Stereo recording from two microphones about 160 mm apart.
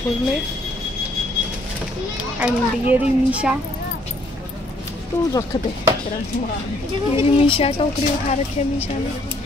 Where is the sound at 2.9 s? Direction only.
5° right (ahead or behind).